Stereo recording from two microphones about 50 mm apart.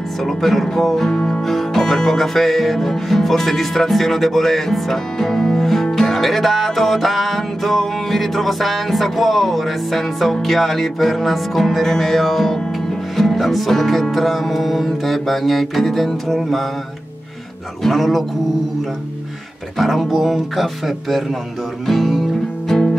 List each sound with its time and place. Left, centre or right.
0.2 s music: centre
1.1 s music: centre
1.4 s music: centre
17.8 s music: centre
19.8 s music: centre